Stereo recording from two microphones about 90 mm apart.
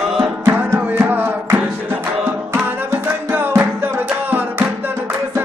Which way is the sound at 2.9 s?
30° right (ahead or behind).